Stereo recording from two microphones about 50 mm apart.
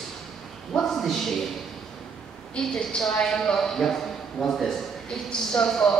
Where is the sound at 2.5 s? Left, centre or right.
Centre.